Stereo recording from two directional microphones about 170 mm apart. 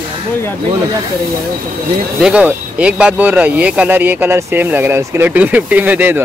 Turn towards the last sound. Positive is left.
turn(degrees=-10)  # may be behind; listen again after turning